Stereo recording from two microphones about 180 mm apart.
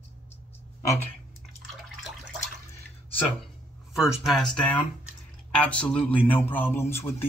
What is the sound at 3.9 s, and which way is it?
A man's voice, centre (ahead or behind).